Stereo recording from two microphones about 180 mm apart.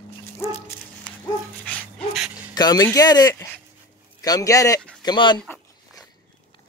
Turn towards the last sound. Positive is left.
turn(degrees=25)  # may be behind; listen again after turning